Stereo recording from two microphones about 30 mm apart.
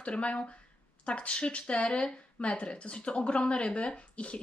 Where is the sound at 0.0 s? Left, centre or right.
Left.